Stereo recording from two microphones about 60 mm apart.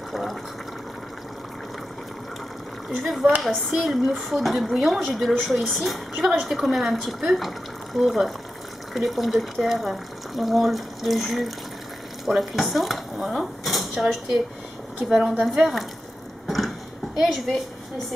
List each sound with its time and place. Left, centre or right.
0.1 s speech: centre
3.0 s a woman's voice: centre
16.4 s a sound: centre
17.2 s a woman's voice: centre